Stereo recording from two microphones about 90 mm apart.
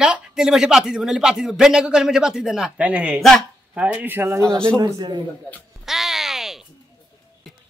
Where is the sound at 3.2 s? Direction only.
5° left (ahead or behind).